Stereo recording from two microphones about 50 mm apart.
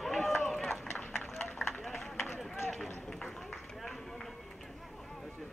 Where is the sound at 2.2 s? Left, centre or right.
Centre.